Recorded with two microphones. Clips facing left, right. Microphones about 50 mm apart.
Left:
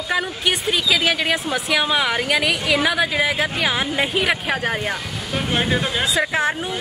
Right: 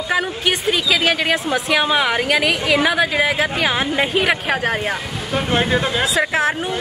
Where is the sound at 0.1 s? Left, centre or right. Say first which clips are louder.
Right 2 dB; centre.